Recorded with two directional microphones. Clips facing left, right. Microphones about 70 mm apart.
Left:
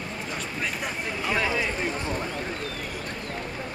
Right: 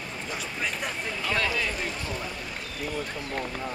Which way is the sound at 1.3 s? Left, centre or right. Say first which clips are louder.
Left 2 dB; centre.